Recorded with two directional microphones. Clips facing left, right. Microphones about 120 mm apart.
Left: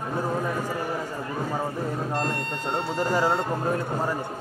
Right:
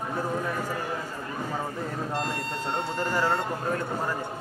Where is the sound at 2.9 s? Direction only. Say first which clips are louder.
Left 3 dB; 15° left (ahead or behind).